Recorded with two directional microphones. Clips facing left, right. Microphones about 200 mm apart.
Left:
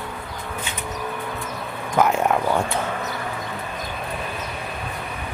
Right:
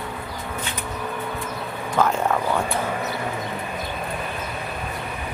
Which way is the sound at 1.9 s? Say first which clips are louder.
Left 2 dB; 10° left (ahead or behind).